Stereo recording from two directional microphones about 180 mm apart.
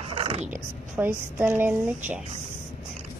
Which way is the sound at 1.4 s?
10° right (ahead or behind).